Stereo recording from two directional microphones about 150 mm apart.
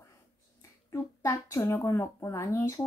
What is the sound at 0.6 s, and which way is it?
Speech, 20° left (ahead or behind).